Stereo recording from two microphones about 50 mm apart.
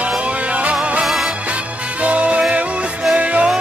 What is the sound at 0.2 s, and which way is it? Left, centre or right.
Music, right.